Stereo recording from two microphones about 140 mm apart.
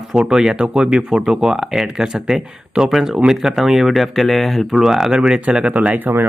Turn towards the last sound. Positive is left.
turn(degrees=-15)  # may be behind; listen again after turning